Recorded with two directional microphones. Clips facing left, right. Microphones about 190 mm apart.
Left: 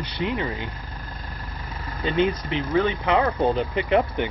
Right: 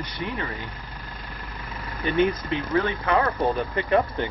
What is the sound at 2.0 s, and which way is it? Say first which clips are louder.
Speech: even; 15° left (ahead or behind).